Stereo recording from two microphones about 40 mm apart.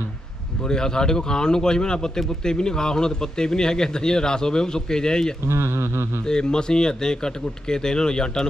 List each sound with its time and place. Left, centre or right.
0.7 s speech: centre
5.5 s speech: right
6.2 s speech: centre